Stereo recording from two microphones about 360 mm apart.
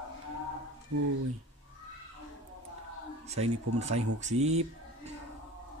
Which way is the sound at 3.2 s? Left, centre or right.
Centre.